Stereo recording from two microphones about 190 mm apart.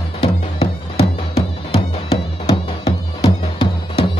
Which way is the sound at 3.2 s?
25° left (ahead or behind).